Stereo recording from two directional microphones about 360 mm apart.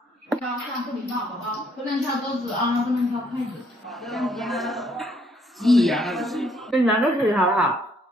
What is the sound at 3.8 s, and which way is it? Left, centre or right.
A woman's voice, centre.